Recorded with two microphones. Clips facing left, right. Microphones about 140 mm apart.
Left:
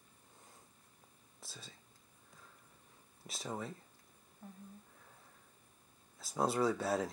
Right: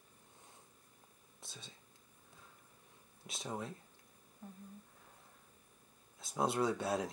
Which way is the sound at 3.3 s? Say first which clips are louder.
Even; centre (ahead or behind).